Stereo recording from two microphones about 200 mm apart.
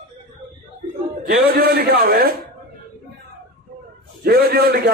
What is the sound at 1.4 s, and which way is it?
Speech, 50° right (ahead or behind).